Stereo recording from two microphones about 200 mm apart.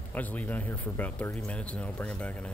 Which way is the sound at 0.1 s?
10° left (ahead or behind).